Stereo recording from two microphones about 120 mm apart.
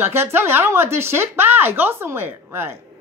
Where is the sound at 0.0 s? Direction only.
20° right (ahead or behind).